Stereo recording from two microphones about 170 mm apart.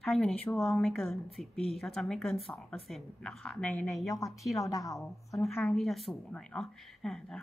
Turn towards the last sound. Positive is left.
turn(degrees=0)  # may be behind; listen again after turning